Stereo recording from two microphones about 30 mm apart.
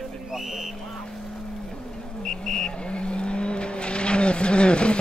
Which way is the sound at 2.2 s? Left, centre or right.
Centre.